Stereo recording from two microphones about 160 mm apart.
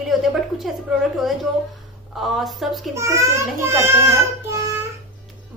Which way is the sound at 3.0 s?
20° right (ahead or behind).